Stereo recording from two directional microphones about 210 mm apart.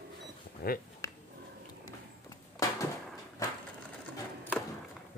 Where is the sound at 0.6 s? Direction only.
45° left (ahead or behind).